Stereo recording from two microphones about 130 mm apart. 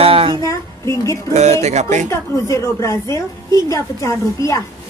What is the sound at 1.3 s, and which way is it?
Speech, 60° right (ahead or behind).